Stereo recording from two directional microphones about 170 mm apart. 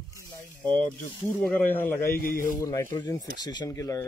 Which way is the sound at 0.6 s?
5° left (ahead or behind).